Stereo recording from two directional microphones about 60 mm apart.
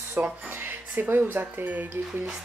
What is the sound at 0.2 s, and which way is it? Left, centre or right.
Speech, right.